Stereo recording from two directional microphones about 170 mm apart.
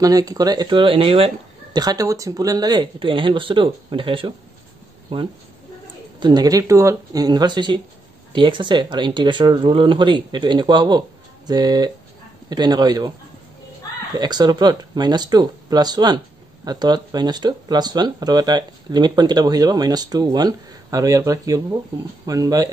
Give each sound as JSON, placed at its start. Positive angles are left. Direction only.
{"t": 0.0, "sound": "speech", "side_deg": -20}
{"t": 14.1, "sound": "speech", "side_deg": -25}